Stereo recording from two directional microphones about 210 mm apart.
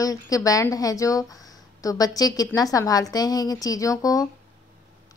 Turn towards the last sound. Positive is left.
turn(degrees=15)  # may be behind; listen again after turning